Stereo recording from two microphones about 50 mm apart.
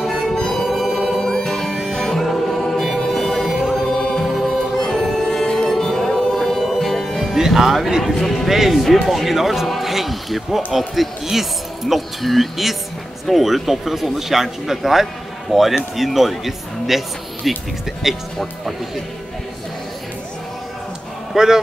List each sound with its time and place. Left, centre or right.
0.0 s music: centre
1.1 s music: centre
2.1 s music: centre
7.3 s speech: centre
21.4 s speech: centre